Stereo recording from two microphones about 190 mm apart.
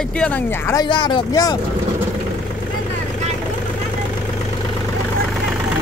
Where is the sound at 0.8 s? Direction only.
25° left (ahead or behind).